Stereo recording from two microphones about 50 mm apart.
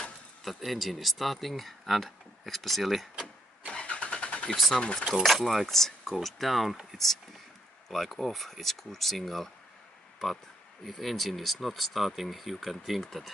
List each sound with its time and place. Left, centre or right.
0.4 s speech: centre
3.6 s vehicle: centre
4.7 s speech: centre
7.9 s speech: centre